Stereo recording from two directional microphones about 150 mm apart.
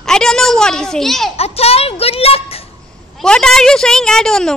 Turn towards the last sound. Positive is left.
turn(degrees=5)  # may be behind; listen again after turning